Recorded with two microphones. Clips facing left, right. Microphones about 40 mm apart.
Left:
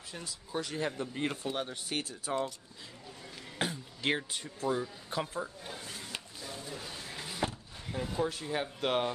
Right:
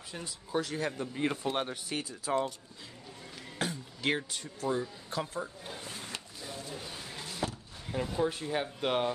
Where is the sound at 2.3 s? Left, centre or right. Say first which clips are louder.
Right 4 dB; right.